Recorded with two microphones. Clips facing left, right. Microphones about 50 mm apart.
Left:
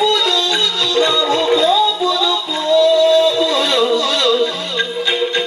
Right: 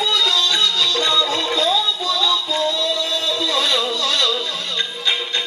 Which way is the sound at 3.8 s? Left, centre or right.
Left.